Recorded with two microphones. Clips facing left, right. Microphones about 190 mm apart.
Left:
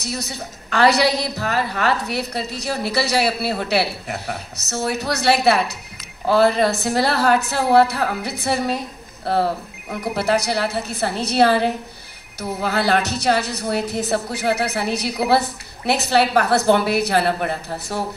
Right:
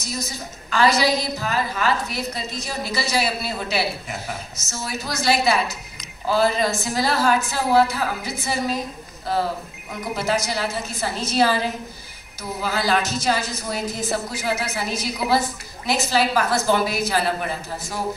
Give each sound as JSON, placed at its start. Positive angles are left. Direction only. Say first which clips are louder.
{"t": 0.0, "sound": "a woman's voice", "louder": "left 2 dB", "side_deg": 65}